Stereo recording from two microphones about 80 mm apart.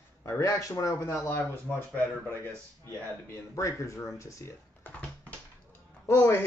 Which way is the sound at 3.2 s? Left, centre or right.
Left.